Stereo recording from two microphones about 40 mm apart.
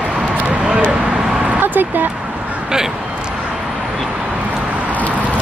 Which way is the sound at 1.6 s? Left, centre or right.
Right.